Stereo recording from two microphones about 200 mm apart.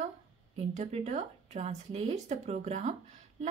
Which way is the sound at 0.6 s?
35° right (ahead or behind).